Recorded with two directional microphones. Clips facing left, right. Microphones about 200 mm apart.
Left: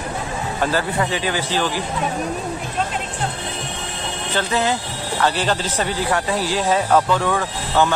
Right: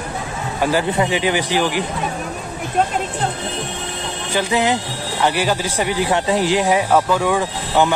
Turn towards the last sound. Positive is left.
turn(degrees=-15)  # may be behind; listen again after turning